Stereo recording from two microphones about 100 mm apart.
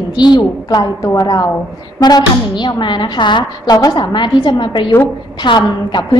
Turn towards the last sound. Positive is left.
turn(degrees=50)  # may be behind; listen again after turning